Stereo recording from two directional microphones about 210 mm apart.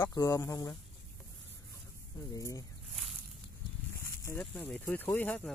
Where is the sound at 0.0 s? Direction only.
15° left (ahead or behind).